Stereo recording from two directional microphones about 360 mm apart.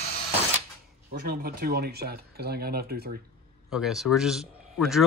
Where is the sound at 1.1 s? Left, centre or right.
Right.